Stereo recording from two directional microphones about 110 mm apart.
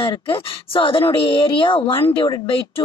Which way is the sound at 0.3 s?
55° left (ahead or behind).